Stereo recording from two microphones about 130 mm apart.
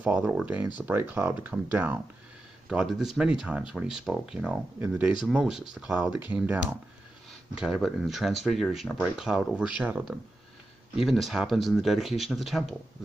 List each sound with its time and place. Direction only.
0.0 s speech: 10° right (ahead or behind)
2.7 s speech: 5° right (ahead or behind)